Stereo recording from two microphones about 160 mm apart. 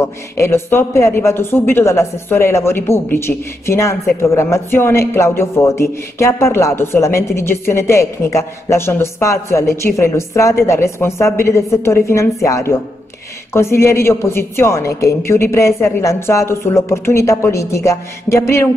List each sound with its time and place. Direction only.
0.0 s speech: 15° left (ahead or behind)